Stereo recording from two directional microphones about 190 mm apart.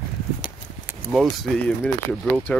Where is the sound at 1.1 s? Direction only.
Centre (ahead or behind).